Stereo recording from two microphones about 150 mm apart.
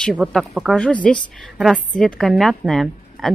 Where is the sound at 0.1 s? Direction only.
Centre (ahead or behind).